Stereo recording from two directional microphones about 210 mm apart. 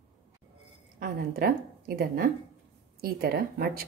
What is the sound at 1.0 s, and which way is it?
A woman's voice, 45° right (ahead or behind).